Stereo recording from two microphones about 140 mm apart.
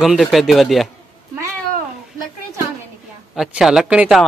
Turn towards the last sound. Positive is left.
turn(degrees=-5)  # may be behind; listen again after turning